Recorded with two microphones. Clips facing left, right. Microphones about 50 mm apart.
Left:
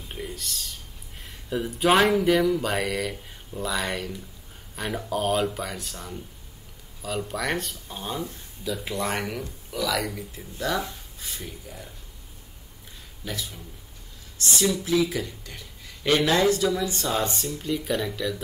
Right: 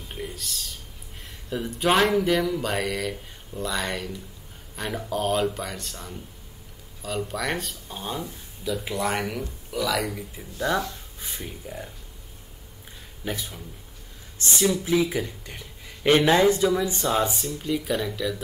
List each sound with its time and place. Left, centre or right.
0.1 s speech: centre
11.1 s speech: right
13.2 s speech: right
14.6 s speech: centre